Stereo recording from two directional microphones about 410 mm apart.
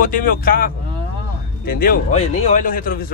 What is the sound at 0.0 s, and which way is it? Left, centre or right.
Speech, left.